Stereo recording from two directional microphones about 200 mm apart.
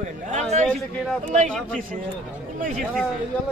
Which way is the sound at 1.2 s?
35° right (ahead or behind).